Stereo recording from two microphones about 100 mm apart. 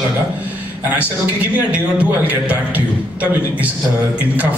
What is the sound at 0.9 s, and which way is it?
A man's voice, 15° right (ahead or behind).